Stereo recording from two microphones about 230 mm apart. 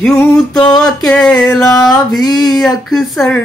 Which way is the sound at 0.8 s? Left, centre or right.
Centre.